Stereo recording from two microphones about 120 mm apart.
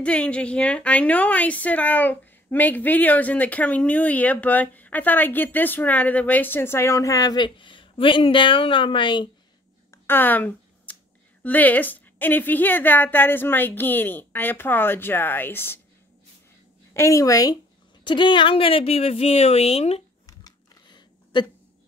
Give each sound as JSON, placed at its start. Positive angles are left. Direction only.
{"t": 0.0, "sound": "a woman's voice", "side_deg": 10}
{"t": 9.8, "sound": "finger snapping", "side_deg": 20}
{"t": 11.4, "sound": "a woman's voice", "side_deg": 15}
{"t": 16.9, "sound": "speech", "side_deg": 25}
{"t": 18.0, "sound": "speech", "side_deg": 40}
{"t": 20.4, "sound": "a sound", "side_deg": 40}